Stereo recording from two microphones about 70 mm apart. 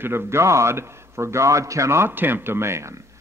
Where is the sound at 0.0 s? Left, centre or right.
Right.